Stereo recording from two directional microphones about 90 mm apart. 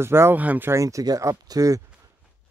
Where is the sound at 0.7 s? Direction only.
40° right (ahead or behind).